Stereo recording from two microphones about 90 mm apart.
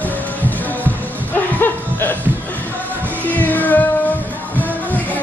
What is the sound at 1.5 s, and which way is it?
Chuckle, 20° left (ahead or behind).